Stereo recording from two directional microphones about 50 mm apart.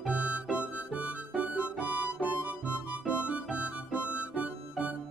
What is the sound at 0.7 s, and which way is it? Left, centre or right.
Music, right.